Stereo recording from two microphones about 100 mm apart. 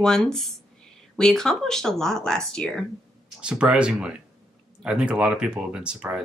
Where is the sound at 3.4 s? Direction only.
10° right (ahead or behind).